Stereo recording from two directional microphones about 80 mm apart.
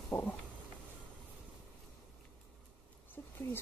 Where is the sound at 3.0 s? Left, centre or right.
Left.